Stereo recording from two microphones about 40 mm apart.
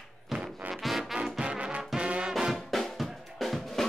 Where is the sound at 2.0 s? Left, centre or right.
Right.